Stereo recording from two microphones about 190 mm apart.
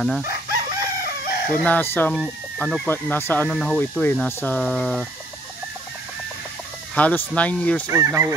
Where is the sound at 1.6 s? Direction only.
10° left (ahead or behind).